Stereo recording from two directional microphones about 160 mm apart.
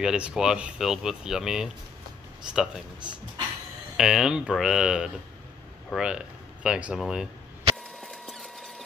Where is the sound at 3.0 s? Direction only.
30° right (ahead or behind).